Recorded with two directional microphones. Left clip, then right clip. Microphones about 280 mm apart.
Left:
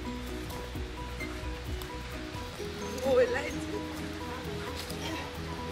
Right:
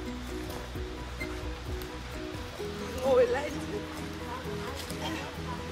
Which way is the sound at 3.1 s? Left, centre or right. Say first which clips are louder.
Right 2 dB; right.